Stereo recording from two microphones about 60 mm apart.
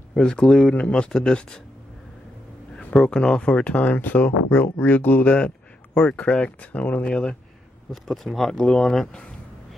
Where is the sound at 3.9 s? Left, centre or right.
Left.